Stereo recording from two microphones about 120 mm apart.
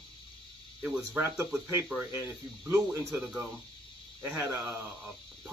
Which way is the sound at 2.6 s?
20° right (ahead or behind).